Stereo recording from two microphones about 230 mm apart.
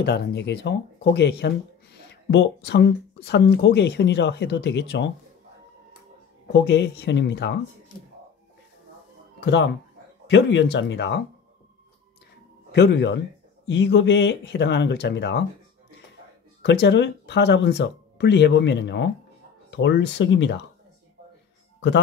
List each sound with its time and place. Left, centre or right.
0.0 s speech: left
6.5 s speech: left
9.4 s speech: left
12.7 s speech: left
16.6 s speech: left